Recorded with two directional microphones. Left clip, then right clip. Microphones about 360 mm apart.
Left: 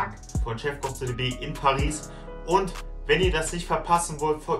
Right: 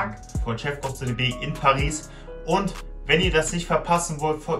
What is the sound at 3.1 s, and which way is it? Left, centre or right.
Speech, centre.